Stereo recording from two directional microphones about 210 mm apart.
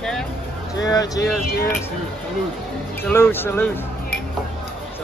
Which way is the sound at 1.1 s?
50° left (ahead or behind).